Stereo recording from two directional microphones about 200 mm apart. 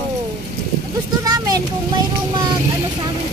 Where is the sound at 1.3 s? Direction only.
20° right (ahead or behind).